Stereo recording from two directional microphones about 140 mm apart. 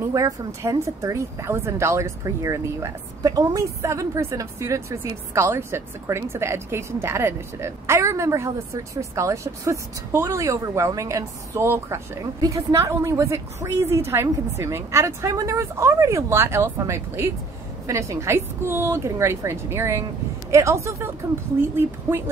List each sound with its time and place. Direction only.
0.1 s speech: 20° right (ahead or behind)